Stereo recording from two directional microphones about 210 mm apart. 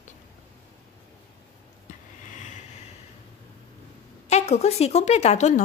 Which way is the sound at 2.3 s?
35° left (ahead or behind).